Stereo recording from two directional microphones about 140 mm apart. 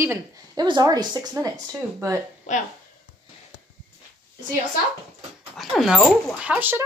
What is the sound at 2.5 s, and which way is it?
Speech, 60° left (ahead or behind).